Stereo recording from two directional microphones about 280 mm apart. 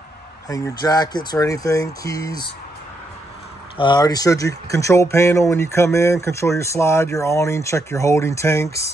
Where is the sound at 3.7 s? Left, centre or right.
Centre.